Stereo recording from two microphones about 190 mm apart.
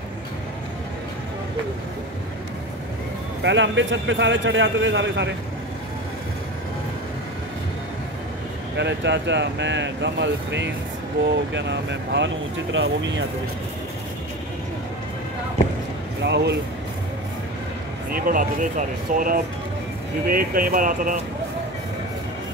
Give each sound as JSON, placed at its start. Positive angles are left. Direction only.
{"t": 3.4, "sound": "speech", "side_deg": -75}
{"t": 8.7, "sound": "speech", "side_deg": -65}
{"t": 16.2, "sound": "speech", "side_deg": -65}
{"t": 18.1, "sound": "speech", "side_deg": -45}